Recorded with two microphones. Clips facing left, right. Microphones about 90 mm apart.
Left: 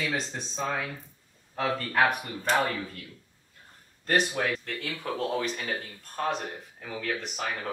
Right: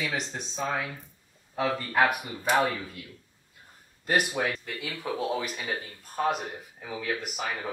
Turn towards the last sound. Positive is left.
turn(degrees=-5)  # may be behind; listen again after turning